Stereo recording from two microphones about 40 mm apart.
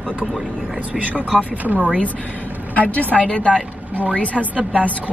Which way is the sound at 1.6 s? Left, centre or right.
Right.